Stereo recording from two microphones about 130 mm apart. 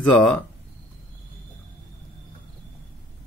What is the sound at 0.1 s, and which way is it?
Speech, 5° left (ahead or behind).